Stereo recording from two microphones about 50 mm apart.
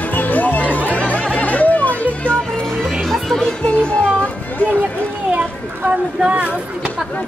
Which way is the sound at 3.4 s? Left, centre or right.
Left.